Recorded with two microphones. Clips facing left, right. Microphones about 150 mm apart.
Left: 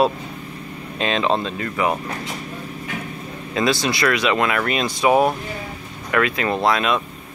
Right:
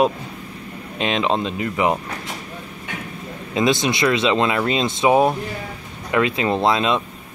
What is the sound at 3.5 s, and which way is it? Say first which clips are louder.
Speech: right 2 dB; 20° right (ahead or behind).